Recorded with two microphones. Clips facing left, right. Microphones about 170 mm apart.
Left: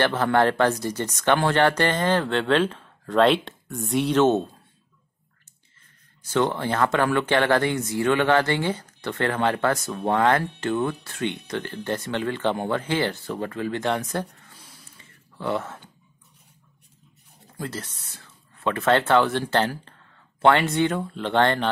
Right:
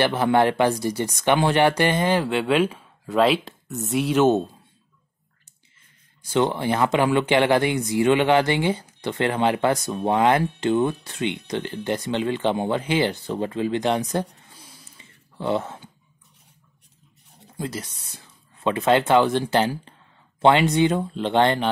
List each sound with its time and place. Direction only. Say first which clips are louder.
0.0 s speech: right 1 dB; 15° right (ahead or behind)
6.3 s speech: right 2 dB; 15° right (ahead or behind)
15.0 s a sound: right 4 dB; 20° right (ahead or behind)
17.6 s speech: right 2 dB; 15° right (ahead or behind)